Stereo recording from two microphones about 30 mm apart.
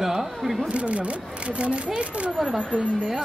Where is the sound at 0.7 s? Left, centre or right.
Right.